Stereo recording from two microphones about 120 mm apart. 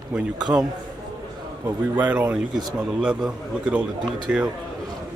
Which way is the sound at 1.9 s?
15° right (ahead or behind).